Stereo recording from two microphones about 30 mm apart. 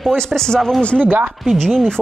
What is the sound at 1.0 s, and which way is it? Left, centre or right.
Speech, right.